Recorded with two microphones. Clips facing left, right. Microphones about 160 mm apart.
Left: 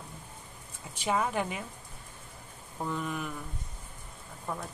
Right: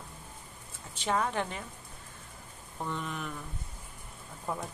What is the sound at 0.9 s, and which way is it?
Speech, 10° left (ahead or behind).